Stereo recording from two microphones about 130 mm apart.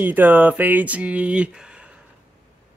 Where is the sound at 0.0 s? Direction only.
15° right (ahead or behind).